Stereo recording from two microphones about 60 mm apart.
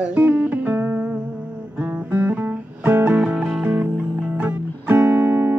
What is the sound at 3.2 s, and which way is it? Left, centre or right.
Music, centre.